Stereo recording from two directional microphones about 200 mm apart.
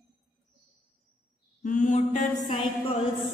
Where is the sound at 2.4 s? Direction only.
25° left (ahead or behind).